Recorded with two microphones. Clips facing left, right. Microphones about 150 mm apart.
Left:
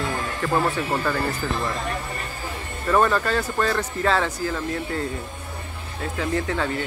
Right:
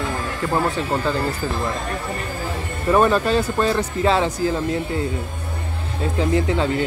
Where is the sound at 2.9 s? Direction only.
20° right (ahead or behind).